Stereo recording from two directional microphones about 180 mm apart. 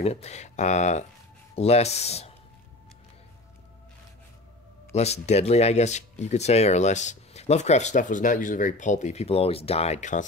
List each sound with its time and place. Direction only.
0.0 s speech: 35° left (ahead or behind)
4.9 s speech: 35° left (ahead or behind)